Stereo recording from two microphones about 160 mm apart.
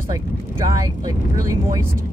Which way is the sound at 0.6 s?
25° right (ahead or behind).